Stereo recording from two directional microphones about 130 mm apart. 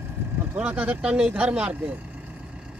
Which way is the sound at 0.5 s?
10° right (ahead or behind).